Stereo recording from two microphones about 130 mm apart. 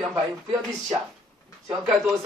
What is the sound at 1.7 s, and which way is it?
Speech, centre (ahead or behind).